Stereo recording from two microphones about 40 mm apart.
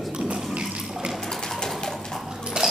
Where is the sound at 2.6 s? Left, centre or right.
Centre.